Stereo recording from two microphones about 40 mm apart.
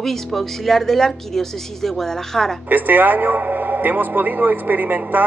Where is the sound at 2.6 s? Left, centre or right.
Right.